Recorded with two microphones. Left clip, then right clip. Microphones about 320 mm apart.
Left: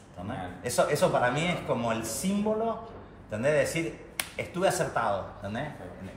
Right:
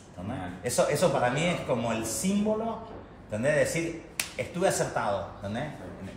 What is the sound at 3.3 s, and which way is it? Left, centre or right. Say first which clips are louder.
A man's voice: even; centre.